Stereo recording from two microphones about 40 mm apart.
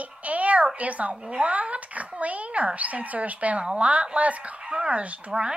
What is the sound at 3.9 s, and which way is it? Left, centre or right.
A child's voice, right.